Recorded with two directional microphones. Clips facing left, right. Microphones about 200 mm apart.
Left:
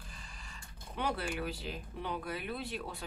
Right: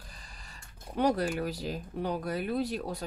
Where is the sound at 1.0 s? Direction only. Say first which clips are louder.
Right 8 dB; 40° right (ahead or behind).